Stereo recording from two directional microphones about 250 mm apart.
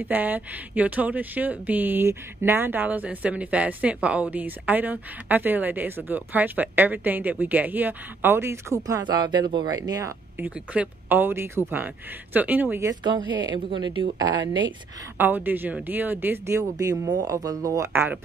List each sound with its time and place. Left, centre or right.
0.0 s speech: centre